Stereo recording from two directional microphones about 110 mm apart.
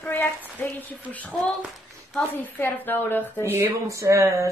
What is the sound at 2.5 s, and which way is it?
Speech, 20° left (ahead or behind).